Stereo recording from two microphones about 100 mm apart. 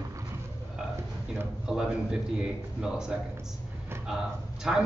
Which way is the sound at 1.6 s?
5° right (ahead or behind).